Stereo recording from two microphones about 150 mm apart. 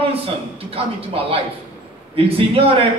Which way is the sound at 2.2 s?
40° right (ahead or behind).